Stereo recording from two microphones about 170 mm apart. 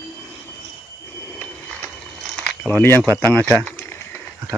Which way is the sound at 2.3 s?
5° left (ahead or behind).